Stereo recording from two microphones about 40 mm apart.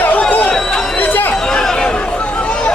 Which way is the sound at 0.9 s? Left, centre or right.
Left.